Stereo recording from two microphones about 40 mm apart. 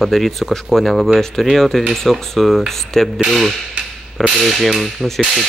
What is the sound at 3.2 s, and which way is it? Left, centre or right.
Speech, centre.